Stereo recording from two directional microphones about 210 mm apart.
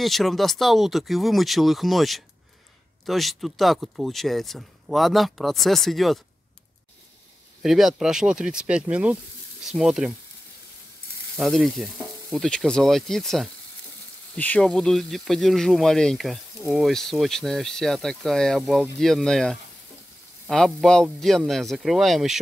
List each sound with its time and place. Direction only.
0.0 s speech: centre (ahead or behind)
7.6 s speech: centre (ahead or behind)
11.3 s speech: centre (ahead or behind)